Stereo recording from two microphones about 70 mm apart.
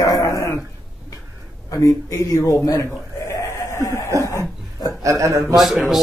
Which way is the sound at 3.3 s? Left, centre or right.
Left.